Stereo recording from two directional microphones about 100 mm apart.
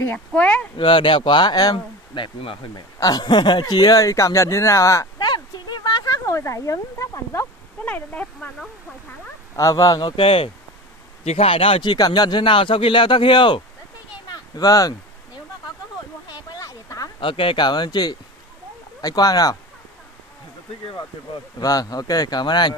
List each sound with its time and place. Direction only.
0.0 s speech: 15° left (ahead or behind)
0.7 s speech: 60° left (ahead or behind)
2.7 s speech: 40° left (ahead or behind)
4.0 s speech: 30° left (ahead or behind)
5.2 s a sound: 45° left (ahead or behind)
7.8 s speech: 15° left (ahead or behind)
9.6 s speech: 35° left (ahead or behind)
10.1 s speech: 65° left (ahead or behind)
11.2 s speech: 80° left
11.9 s speech: 45° left (ahead or behind)
14.3 s a sound: 40° left (ahead or behind)
16.3 s a sound: 40° left (ahead or behind)
17.2 s speech: 60° left (ahead or behind); by 19.5 s 40° left (ahead or behind)
21.5 s speech: 40° left (ahead or behind)